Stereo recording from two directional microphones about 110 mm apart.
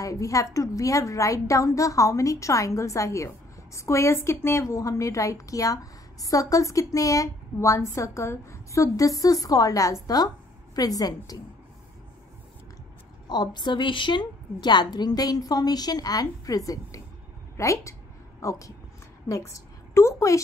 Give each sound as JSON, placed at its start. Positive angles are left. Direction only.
{"t": 0.0, "sound": "a woman's voice", "side_deg": 30}
{"t": 13.3, "sound": "a woman's voice", "side_deg": 40}
{"t": 19.2, "sound": "a sound", "side_deg": 30}